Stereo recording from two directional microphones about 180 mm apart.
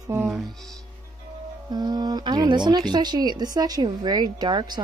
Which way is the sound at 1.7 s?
25° right (ahead or behind).